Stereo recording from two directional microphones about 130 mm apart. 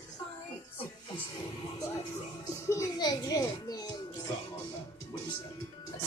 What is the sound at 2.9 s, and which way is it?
Music, 30° left (ahead or behind).